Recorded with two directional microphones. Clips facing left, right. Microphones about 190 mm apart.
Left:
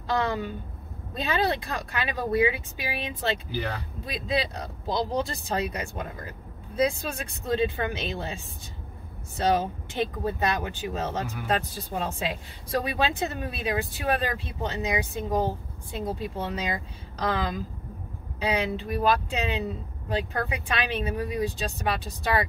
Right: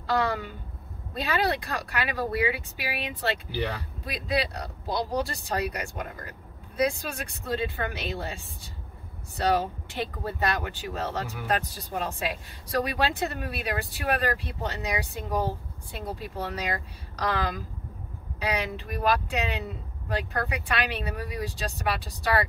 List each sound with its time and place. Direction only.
0.0 s speech: 20° left (ahead or behind)
9.4 s speech: 20° left (ahead or behind)